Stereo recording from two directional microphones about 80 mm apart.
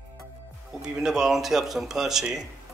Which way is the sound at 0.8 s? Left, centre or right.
Centre.